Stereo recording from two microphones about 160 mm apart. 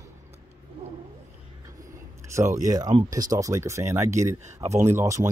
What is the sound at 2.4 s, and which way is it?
Speech, 55° right (ahead or behind).